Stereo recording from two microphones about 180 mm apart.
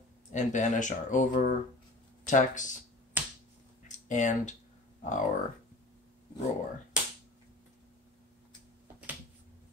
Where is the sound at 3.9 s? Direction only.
45° left (ahead or behind).